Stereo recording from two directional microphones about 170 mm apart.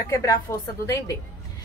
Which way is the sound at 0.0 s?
15° left (ahead or behind).